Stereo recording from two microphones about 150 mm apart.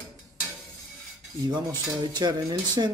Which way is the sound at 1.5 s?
30° right (ahead or behind).